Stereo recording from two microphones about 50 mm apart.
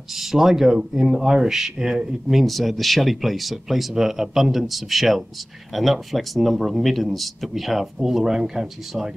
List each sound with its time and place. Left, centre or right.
0.1 s speech: centre